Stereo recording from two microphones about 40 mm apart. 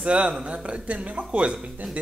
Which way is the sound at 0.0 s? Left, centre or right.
Right.